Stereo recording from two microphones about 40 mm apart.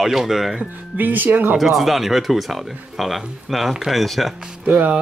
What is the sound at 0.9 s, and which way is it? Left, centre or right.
Speech, right.